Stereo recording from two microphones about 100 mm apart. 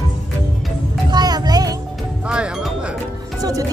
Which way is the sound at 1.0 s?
45° right (ahead or behind).